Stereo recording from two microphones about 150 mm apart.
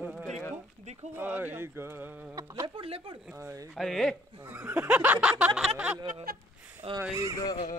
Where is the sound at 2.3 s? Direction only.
20° right (ahead or behind).